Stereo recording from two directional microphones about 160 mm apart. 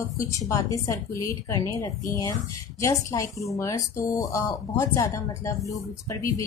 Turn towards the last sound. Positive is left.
turn(degrees=20)  # may be behind; listen again after turning